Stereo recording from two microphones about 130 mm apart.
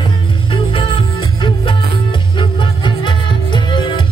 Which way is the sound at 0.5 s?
45° left (ahead or behind).